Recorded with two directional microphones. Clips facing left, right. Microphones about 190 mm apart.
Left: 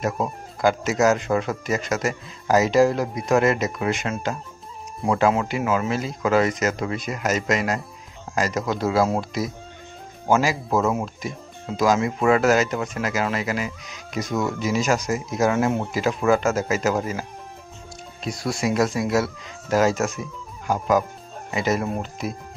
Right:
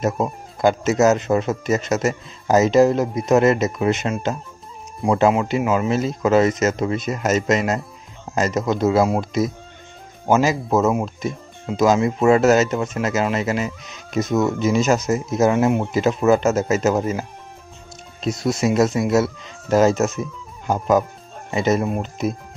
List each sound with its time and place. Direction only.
0.0 s speech: 25° right (ahead or behind)